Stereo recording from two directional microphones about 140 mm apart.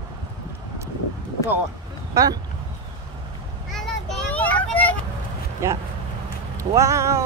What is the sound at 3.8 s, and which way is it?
Children playing, 5° left (ahead or behind).